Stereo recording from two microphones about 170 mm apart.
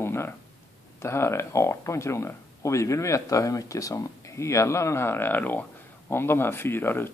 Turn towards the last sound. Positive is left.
turn(degrees=10)  # may be behind; listen again after turning